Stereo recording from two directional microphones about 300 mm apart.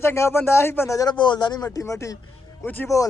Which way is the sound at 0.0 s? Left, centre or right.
Centre.